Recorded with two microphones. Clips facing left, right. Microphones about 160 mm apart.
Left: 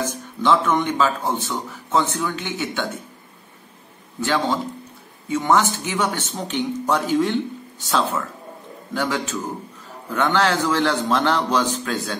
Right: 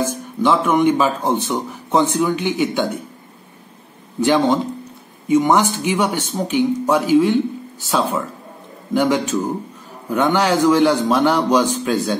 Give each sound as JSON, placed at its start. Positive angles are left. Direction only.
{"t": 0.0, "sound": "speech", "side_deg": -10}
{"t": 4.2, "sound": "speech", "side_deg": -15}